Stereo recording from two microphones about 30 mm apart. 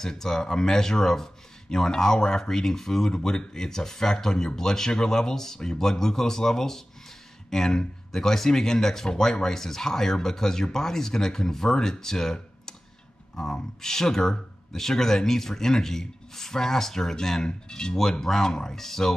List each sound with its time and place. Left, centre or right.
0.0 s speech: centre